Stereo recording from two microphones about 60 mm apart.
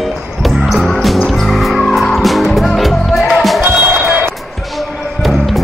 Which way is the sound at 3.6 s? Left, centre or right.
Right.